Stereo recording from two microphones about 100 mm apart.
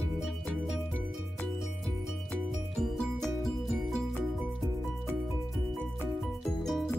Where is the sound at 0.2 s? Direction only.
5° right (ahead or behind).